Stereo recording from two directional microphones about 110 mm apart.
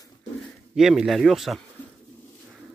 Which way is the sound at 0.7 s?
5° right (ahead or behind).